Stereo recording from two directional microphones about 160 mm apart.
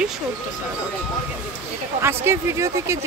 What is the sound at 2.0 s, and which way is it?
Speech, 15° right (ahead or behind).